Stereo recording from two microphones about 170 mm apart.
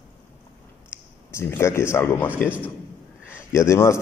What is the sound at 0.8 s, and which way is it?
Speech, 15° left (ahead or behind).